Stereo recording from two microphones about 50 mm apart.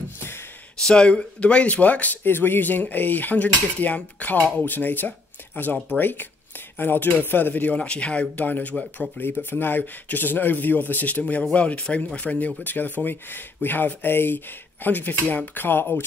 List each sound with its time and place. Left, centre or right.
0.8 s speech: centre
2.2 s speech: left
7.8 s speech: left
9.2 s speech: left